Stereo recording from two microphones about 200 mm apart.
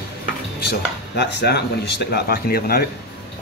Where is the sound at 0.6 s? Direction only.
55° left (ahead or behind).